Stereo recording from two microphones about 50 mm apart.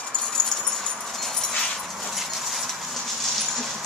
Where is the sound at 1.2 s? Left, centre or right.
Centre.